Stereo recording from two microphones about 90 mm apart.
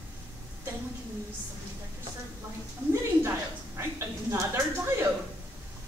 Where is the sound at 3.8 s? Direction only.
30° right (ahead or behind).